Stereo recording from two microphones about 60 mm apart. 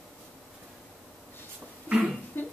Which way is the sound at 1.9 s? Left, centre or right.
Left.